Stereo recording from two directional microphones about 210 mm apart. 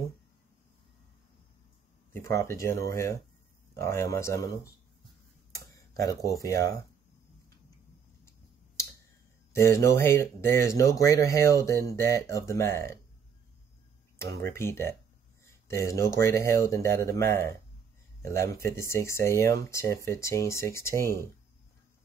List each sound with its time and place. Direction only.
2.1 s speech: 15° left (ahead or behind)
5.5 s tick-tock: 15° left (ahead or behind)
9.5 s speech: 15° left (ahead or behind)
14.5 s speech: 10° left (ahead or behind)
15.4 s a sound: 15° left (ahead or behind)
16.2 s speech: 15° left (ahead or behind)